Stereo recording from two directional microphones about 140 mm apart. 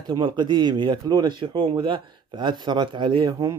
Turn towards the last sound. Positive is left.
turn(degrees=-25)  # may be behind; listen again after turning